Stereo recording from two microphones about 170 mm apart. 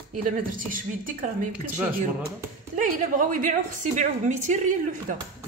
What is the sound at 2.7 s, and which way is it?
A man's voice, 50° right (ahead or behind).